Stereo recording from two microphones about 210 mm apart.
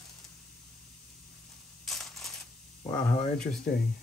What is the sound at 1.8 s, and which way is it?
Crushing, centre (ahead or behind).